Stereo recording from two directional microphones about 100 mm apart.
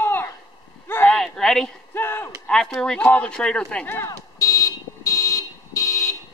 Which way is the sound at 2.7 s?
10° left (ahead or behind).